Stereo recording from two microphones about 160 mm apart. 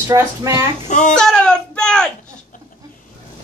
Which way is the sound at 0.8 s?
50° left (ahead or behind).